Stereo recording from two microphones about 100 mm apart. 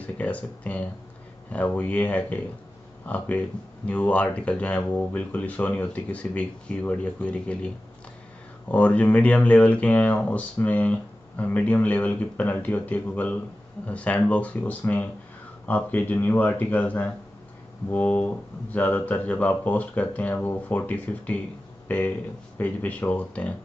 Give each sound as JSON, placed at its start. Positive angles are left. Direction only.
{"t": 0.0, "sound": "speech", "side_deg": 15}